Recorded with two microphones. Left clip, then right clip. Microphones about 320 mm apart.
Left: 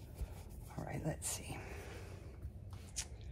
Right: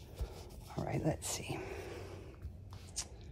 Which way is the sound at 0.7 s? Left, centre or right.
Right.